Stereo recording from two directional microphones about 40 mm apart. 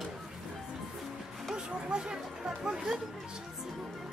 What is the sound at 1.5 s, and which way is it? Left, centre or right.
Speech, right.